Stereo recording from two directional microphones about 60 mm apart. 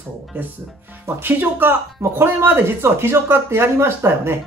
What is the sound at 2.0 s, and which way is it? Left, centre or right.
Speech, right.